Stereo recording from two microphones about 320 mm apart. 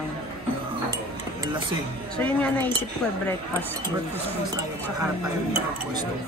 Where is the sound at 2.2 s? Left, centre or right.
Centre.